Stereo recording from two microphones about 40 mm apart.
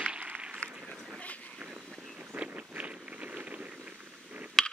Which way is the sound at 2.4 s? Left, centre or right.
Right.